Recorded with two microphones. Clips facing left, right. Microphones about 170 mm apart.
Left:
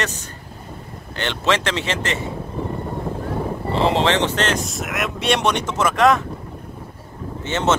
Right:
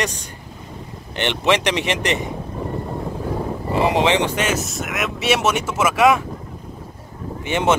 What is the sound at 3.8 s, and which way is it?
Speech, 15° right (ahead or behind).